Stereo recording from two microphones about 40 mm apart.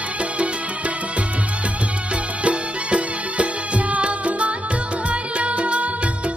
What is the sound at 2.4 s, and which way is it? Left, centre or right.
Music, right.